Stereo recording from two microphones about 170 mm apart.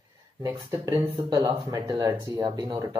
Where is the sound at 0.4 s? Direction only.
20° right (ahead or behind).